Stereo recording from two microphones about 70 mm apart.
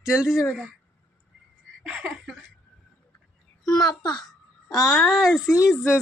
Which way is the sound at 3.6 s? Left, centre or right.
Left.